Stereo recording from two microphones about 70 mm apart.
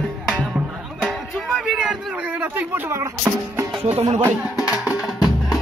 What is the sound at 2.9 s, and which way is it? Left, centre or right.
Music, right.